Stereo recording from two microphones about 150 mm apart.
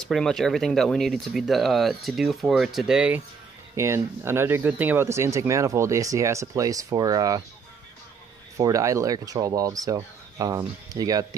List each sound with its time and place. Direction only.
0.0 s speech: 5° left (ahead or behind)
3.7 s speech: 20° right (ahead or behind)
8.5 s speech: 20° right (ahead or behind)